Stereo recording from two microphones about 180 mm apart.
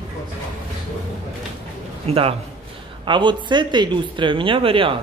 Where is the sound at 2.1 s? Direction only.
30° right (ahead or behind).